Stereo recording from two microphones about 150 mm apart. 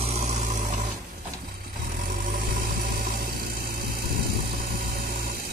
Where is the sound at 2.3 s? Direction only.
85° right.